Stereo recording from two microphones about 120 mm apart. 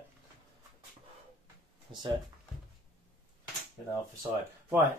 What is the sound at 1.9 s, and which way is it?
Speech, 45° right (ahead or behind).